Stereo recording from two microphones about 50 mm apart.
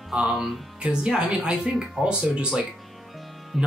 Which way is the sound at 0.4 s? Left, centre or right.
Centre.